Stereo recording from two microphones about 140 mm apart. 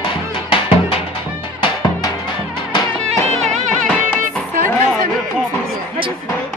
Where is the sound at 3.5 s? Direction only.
55° right (ahead or behind).